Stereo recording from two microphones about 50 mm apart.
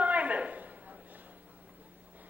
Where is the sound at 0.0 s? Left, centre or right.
Right.